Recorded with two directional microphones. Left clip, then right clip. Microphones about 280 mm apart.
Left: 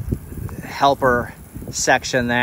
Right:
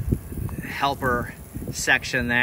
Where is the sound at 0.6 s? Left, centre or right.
Centre.